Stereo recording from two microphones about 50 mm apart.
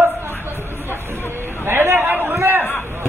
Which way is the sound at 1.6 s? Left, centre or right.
Right.